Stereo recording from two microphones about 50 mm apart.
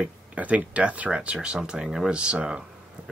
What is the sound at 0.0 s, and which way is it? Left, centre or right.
Speech, right.